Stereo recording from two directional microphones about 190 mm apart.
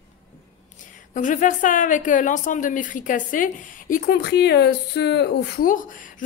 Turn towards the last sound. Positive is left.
turn(degrees=45)  # may be behind; listen again after turning